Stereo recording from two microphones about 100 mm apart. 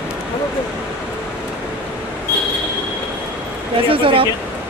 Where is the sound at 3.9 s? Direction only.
60° right (ahead or behind).